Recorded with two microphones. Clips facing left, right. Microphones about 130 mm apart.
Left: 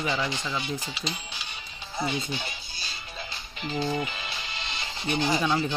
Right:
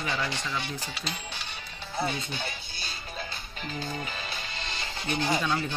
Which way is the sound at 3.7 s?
35° left (ahead or behind).